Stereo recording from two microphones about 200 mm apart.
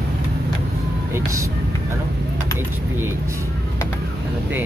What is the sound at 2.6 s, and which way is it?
Speech, 10° right (ahead or behind).